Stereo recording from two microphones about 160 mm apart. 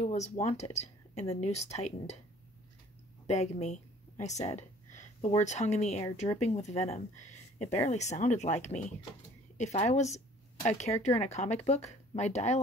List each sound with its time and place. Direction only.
0.0 s speech: 45° left (ahead or behind)
3.3 s a sound: 45° left (ahead or behind)
5.4 s speech: 45° left (ahead or behind)